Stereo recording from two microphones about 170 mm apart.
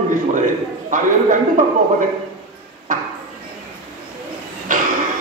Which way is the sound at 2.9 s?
50° right (ahead or behind).